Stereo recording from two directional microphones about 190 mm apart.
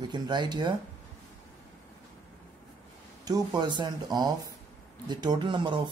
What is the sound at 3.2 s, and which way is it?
Speech, 20° right (ahead or behind).